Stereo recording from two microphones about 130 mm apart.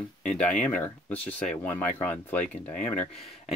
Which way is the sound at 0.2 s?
10° left (ahead or behind).